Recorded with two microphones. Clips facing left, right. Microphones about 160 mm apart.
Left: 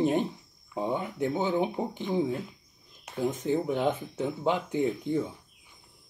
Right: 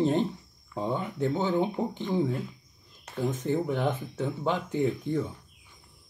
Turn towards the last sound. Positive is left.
turn(degrees=15)  # may be behind; listen again after turning